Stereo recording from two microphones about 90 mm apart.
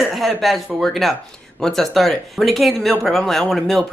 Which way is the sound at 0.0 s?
Centre (ahead or behind).